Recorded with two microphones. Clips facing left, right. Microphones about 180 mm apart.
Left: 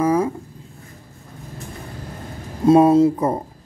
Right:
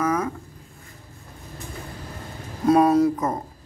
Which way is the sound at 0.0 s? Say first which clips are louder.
Left 6 dB; 30° left (ahead or behind).